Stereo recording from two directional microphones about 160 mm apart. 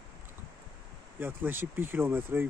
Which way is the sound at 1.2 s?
15° right (ahead or behind).